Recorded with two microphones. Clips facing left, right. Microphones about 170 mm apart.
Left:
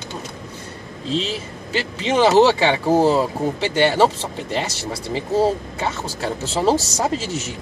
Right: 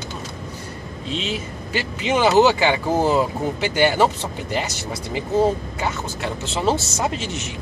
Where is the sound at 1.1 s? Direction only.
35° left (ahead or behind).